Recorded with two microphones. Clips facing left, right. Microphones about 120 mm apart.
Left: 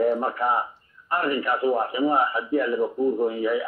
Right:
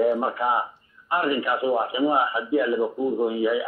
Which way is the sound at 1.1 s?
45° left (ahead or behind).